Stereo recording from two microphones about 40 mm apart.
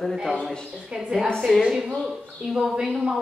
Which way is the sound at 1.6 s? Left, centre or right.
Centre.